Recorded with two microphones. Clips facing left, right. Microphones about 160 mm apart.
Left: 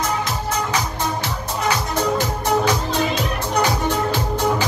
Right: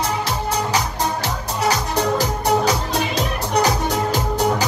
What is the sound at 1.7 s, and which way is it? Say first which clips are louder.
Music: right 1 dB; 35° right (ahead or behind).